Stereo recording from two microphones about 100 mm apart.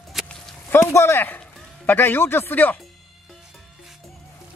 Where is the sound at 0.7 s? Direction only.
30° left (ahead or behind).